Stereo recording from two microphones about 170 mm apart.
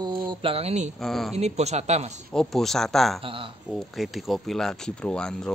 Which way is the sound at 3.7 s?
Centre (ahead or behind).